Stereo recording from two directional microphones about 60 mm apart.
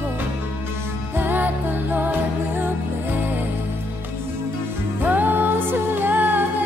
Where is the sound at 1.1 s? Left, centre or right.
Right.